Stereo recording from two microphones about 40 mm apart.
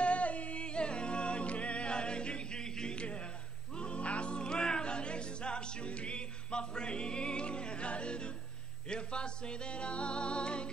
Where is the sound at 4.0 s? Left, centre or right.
Left.